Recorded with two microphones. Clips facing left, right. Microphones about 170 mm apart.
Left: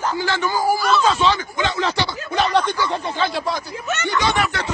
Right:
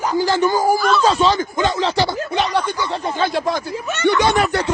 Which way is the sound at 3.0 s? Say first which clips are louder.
Right 3 dB; 45° right (ahead or behind).